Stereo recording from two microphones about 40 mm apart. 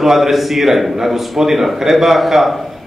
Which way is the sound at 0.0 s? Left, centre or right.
Centre.